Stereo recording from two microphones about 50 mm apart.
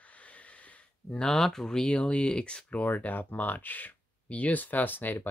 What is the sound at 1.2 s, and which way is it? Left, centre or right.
Speech, centre.